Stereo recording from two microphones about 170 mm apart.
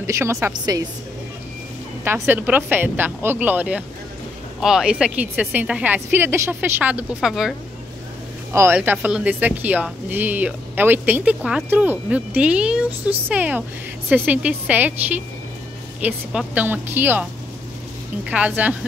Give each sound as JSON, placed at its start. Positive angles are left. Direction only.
{"t": 0.0, "sound": "a woman's voice", "side_deg": -15}
{"t": 2.2, "sound": "a woman's voice", "side_deg": -10}
{"t": 8.5, "sound": "a woman's voice", "side_deg": -15}
{"t": 18.3, "sound": "a woman's voice", "side_deg": -10}